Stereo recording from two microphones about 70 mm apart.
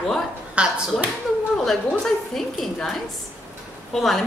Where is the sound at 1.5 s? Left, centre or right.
Centre.